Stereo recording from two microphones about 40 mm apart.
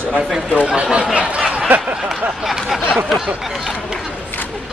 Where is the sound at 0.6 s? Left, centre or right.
Right.